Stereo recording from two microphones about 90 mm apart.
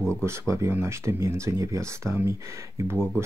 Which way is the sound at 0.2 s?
30° right (ahead or behind).